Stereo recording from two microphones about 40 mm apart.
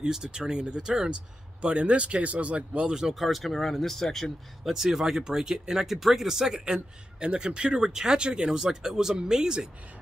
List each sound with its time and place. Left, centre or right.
0.0 s speech: centre
1.6 s speech: right
2.9 s speech: centre
3.2 s speech: centre
4.6 s speech: centre
7.2 s speech: right